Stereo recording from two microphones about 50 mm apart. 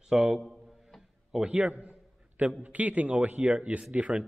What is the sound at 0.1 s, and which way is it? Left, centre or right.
Speech, centre.